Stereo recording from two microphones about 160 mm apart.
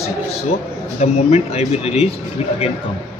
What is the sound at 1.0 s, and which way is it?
Speech, 45° left (ahead or behind).